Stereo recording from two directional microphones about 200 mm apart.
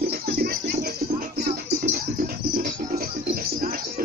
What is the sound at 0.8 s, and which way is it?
Music, 50° right (ahead or behind).